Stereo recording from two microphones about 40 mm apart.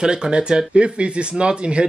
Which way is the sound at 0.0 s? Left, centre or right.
Right.